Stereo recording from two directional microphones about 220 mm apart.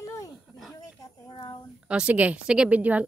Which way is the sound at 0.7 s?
15° left (ahead or behind).